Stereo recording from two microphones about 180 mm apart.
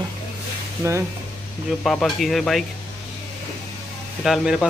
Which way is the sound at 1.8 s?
Centre (ahead or behind).